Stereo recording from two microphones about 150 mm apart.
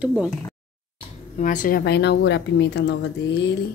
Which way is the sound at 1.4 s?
60° left (ahead or behind).